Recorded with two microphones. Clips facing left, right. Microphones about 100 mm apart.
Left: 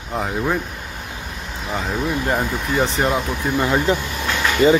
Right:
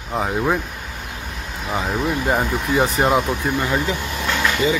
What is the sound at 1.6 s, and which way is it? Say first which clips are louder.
Speech: right 1 dB; centre (ahead or behind).